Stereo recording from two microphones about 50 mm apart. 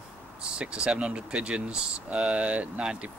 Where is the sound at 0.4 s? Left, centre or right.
Right.